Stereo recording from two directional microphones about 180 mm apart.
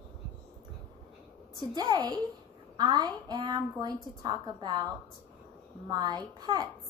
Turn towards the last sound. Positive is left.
turn(degrees=-20)  # may be behind; listen again after turning